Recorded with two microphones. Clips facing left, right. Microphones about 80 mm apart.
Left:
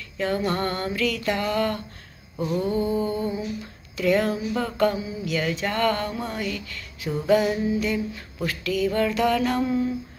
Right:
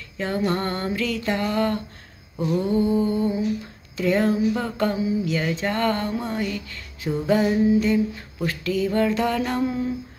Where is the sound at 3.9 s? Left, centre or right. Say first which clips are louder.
Right 1 dB; right.